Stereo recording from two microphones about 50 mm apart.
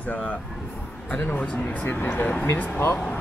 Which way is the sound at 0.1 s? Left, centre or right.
Left.